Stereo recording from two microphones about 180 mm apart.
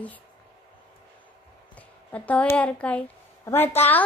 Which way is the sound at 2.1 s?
10° left (ahead or behind).